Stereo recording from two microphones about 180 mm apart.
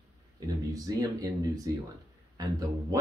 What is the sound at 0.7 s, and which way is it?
Speech, 20° right (ahead or behind).